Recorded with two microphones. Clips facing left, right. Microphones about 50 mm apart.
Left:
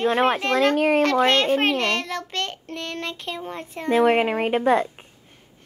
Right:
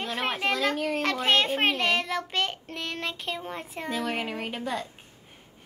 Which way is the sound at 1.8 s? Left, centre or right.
Centre.